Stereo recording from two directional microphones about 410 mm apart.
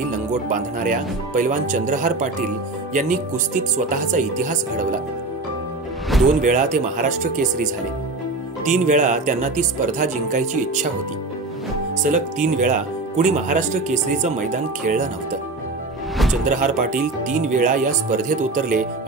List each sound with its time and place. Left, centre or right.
0.5 s speech: centre
6.0 s music: centre
6.4 s speech: centre
8.6 s speech: centre
12.0 s speech: centre
16.4 s speech: centre